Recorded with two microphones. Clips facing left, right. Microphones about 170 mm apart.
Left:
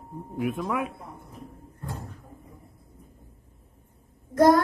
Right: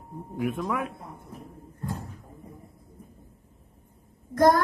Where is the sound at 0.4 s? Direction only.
5° left (ahead or behind).